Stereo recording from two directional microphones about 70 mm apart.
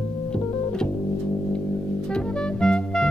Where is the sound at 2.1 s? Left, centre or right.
Centre.